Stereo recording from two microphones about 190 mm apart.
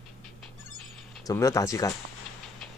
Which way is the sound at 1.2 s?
15° left (ahead or behind).